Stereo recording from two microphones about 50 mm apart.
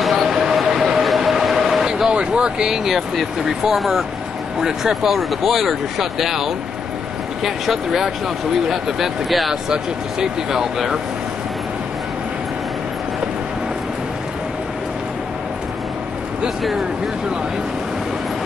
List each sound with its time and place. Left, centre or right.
0.0 s train: centre
2.0 s a sound: centre
2.8 s speech: centre
16.4 s speech: centre